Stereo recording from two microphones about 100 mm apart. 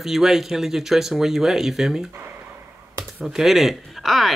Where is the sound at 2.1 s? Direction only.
20° right (ahead or behind).